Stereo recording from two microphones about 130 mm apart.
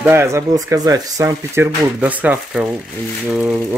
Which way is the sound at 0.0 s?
20° right (ahead or behind).